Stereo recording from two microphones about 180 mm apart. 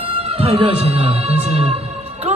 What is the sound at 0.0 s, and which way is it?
A man's voice, 30° right (ahead or behind).